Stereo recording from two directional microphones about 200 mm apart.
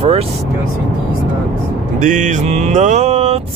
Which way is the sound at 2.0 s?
40° right (ahead or behind).